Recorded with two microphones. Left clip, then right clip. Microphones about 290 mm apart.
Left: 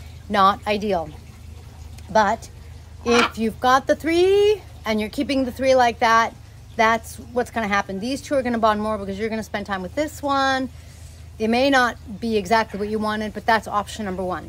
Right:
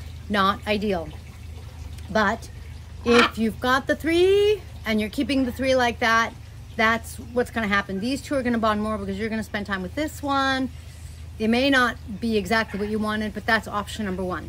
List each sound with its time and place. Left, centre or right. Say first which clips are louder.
0.3 s a woman's voice: left 5 dB; centre
2.1 s a woman's voice: left 4 dB; centre